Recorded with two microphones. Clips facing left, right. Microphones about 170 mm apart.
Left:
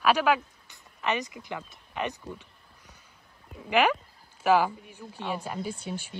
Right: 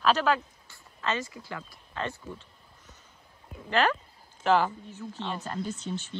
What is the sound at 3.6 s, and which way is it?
Speech, 15° left (ahead or behind).